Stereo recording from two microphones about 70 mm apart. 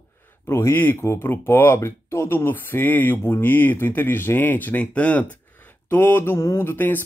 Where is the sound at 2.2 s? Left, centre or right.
Left.